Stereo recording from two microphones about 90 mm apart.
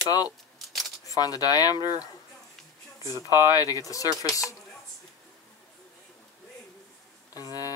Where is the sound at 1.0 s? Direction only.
45° left (ahead or behind).